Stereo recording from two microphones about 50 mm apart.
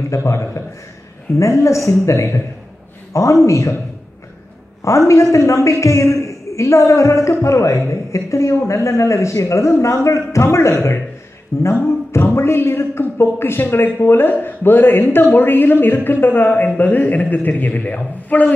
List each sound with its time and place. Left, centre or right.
0.1 s speech: left
1.4 s a man's voice: left
1.9 s speech: left
3.1 s a man's voice: left
4.8 s a man's voice: left
10.4 s a woman's voice: left